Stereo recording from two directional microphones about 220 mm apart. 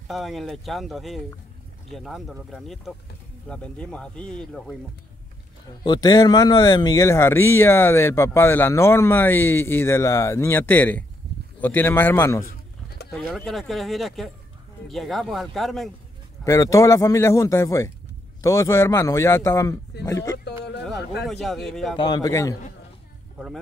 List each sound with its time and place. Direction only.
0.1 s speech: centre (ahead or behind)
5.9 s a man's voice: 20° left (ahead or behind)
12.4 s a sound: 50° left (ahead or behind)
13.3 s speech: centre (ahead or behind)
16.4 s a man's voice: 15° left (ahead or behind)
20.4 s a sound: 50° left (ahead or behind)
21.3 s speech: centre (ahead or behind)
21.9 s a man's voice: 20° left (ahead or behind)
23.3 s music: centre (ahead or behind)